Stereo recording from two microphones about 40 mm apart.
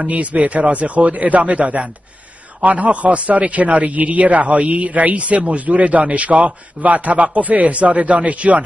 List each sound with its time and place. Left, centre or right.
0.1 s a man's voice: right